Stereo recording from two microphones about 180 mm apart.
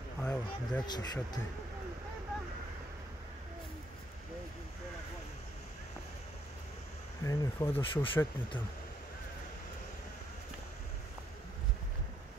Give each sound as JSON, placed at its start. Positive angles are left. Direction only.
{"t": 0.2, "sound": "a sound", "side_deg": 5}
{"t": 0.8, "sound": "speech", "side_deg": 25}
{"t": 7.2, "sound": "speech", "side_deg": 10}
{"t": 7.9, "sound": "speech", "side_deg": 30}